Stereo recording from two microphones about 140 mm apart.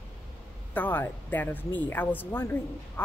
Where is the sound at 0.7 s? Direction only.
15° left (ahead or behind).